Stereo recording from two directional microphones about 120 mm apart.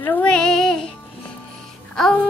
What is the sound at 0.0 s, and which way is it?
Female singing, 15° left (ahead or behind).